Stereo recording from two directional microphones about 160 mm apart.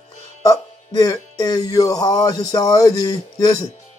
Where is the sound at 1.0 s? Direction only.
25° left (ahead or behind).